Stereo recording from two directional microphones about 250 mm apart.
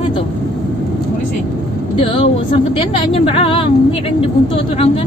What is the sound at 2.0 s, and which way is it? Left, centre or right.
A woman's voice, left.